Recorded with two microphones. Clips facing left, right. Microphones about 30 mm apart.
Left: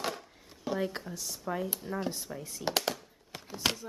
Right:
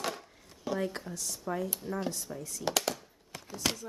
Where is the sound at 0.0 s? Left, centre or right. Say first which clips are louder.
Even; centre.